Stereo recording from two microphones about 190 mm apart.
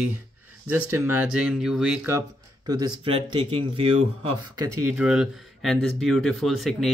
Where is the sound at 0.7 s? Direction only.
10° right (ahead or behind).